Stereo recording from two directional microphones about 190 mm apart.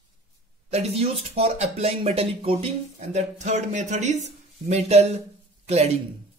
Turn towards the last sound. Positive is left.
turn(degrees=-35)  # may be behind; listen again after turning